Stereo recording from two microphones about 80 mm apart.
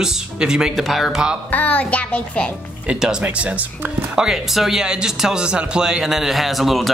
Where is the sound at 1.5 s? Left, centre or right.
Centre.